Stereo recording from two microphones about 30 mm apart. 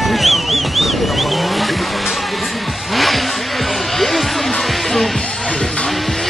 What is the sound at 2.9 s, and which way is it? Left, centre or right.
Music, centre.